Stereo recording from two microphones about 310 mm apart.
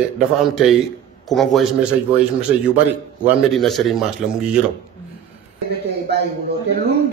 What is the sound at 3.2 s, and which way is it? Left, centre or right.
Speech, centre.